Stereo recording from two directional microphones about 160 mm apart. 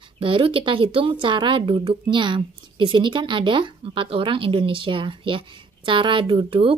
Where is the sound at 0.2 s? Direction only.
30° right (ahead or behind).